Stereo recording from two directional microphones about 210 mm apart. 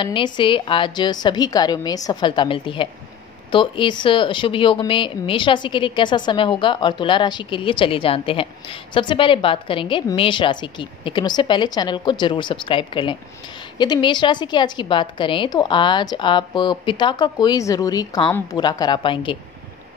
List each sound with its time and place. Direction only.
0.0 s speech: 25° left (ahead or behind)